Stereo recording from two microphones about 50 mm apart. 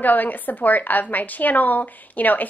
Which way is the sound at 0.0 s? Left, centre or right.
Left.